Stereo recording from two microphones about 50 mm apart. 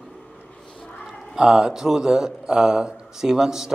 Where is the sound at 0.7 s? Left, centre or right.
Centre.